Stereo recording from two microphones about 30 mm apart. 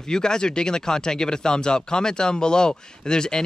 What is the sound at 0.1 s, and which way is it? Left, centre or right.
Speech, left.